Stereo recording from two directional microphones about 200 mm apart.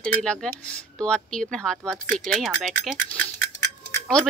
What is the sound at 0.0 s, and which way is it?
Speech, 5° left (ahead or behind).